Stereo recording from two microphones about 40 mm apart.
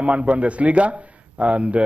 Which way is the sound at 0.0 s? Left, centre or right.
Right.